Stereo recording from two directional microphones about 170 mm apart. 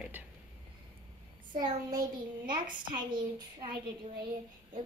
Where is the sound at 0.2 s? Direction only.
10° right (ahead or behind).